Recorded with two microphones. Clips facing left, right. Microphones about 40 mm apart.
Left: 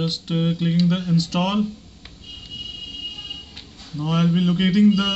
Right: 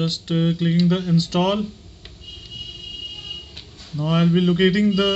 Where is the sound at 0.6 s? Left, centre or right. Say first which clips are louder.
Right 1 dB; centre.